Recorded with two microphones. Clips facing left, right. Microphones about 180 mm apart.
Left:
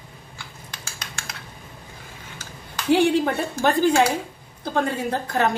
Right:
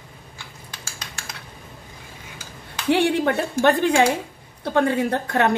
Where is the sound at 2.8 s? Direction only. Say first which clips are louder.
Left 1 dB; 70° right (ahead or behind).